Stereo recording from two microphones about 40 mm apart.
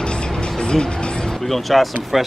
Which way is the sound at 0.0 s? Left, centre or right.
Left.